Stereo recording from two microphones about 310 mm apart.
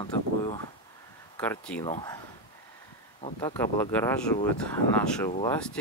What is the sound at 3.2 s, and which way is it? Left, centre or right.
Speech, centre.